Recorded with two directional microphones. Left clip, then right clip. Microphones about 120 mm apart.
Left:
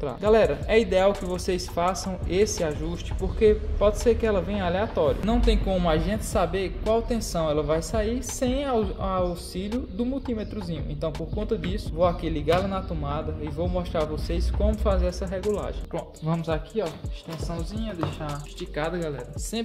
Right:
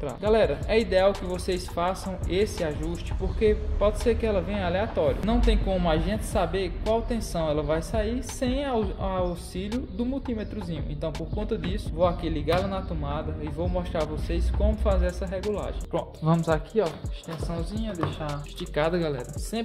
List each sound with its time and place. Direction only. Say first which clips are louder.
0.2 s speech: left 2 dB; 25° left (ahead or behind)
16.4 s speech: right 2 dB; 40° right (ahead or behind)
17.5 s speech: right 1 dB; 20° right (ahead or behind)
18.8 s speech: right 4 dB; 80° right